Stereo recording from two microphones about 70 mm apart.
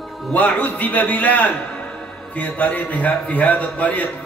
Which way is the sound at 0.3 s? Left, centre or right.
Left.